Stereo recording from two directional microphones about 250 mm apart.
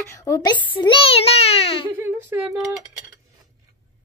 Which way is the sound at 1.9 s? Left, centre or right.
Centre.